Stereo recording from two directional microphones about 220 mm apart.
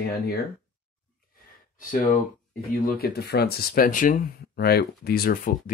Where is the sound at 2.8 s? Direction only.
45° left (ahead or behind).